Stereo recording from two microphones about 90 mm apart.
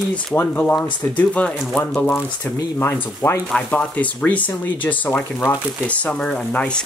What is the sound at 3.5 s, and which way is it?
Speech, 15° left (ahead or behind).